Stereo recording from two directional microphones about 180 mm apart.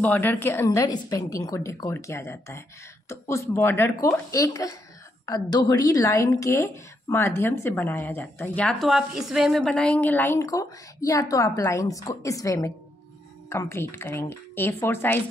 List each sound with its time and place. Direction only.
0.0 s a woman's voice: 10° left (ahead or behind)